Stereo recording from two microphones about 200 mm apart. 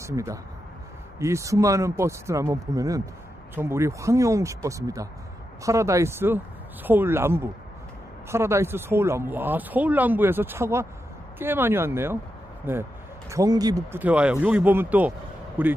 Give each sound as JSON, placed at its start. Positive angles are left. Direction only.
{"t": 0.0, "sound": "speech", "side_deg": -15}